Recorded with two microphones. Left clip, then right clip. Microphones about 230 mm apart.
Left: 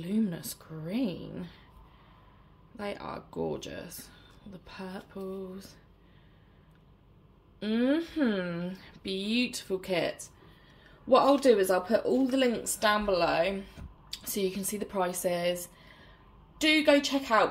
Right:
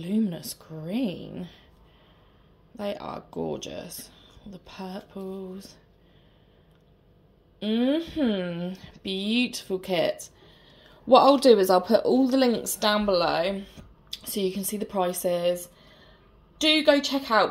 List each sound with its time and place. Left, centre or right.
0.0 s speech: centre
2.7 s speech: centre
7.6 s speech: centre